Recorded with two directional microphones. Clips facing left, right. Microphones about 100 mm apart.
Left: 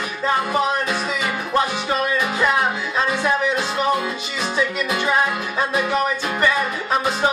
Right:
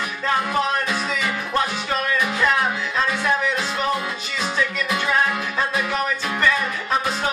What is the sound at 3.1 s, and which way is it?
Music, 25° left (ahead or behind).